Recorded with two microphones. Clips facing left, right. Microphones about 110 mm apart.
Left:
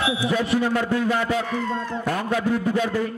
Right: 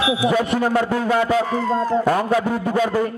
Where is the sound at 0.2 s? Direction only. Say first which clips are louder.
Right 2 dB; 50° right (ahead or behind).